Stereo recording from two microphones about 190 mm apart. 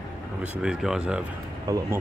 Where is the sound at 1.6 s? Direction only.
20° right (ahead or behind).